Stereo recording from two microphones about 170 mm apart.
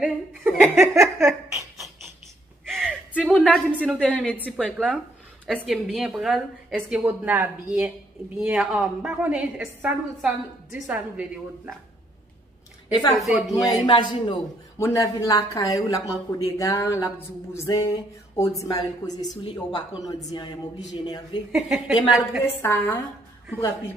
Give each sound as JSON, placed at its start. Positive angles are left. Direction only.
{"t": 0.0, "sound": "speech", "side_deg": -10}
{"t": 2.6, "sound": "a sound", "side_deg": 5}
{"t": 4.5, "sound": "a woman's voice", "side_deg": 5}
{"t": 13.2, "sound": "a woman's voice", "side_deg": -10}
{"t": 13.7, "sound": "speech", "side_deg": 25}
{"t": 14.8, "sound": "speech", "side_deg": 15}
{"t": 21.5, "sound": "a woman's voice", "side_deg": -5}
{"t": 22.4, "sound": "a woman's voice", "side_deg": 15}